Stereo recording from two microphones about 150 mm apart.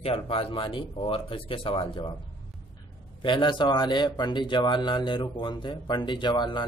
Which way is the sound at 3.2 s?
30° left (ahead or behind).